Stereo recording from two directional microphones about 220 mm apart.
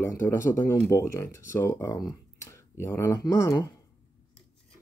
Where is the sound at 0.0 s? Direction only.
15° left (ahead or behind).